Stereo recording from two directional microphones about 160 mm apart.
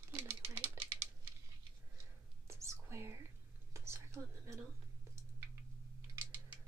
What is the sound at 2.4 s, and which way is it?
Whispering, 15° right (ahead or behind).